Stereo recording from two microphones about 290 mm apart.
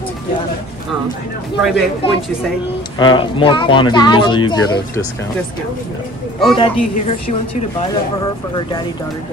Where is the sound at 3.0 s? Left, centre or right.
Centre.